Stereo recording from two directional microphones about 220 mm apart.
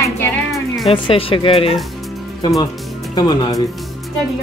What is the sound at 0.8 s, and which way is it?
Speech, 25° left (ahead or behind).